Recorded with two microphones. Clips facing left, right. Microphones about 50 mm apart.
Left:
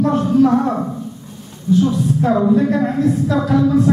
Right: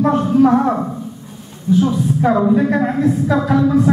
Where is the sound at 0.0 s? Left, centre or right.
Centre.